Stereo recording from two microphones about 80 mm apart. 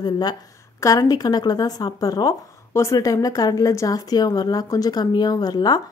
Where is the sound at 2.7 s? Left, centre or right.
Left.